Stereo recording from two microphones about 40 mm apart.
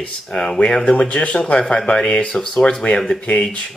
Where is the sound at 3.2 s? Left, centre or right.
Left.